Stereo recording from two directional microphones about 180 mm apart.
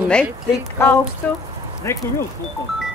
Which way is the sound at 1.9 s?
15° left (ahead or behind).